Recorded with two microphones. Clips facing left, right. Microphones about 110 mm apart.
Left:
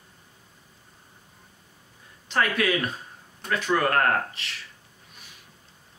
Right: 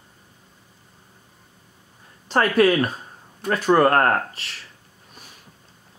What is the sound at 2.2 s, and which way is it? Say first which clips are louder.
Speech: right 7 dB; 40° right (ahead or behind).